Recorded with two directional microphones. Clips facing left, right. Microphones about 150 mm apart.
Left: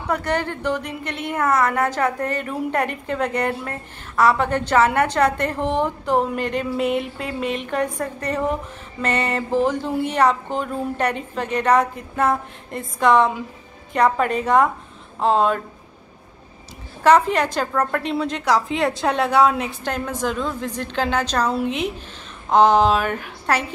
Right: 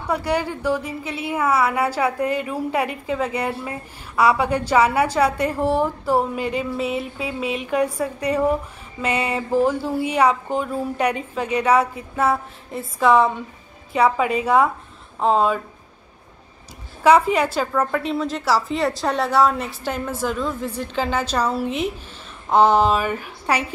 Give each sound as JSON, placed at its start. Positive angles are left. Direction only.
{"t": 0.1, "sound": "a woman's voice", "side_deg": -10}
{"t": 17.0, "sound": "a woman's voice", "side_deg": -10}